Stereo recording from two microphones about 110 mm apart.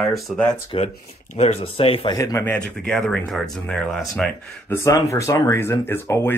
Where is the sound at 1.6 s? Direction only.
55° left (ahead or behind).